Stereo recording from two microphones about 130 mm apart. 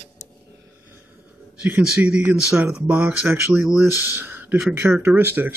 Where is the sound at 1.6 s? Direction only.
15° right (ahead or behind).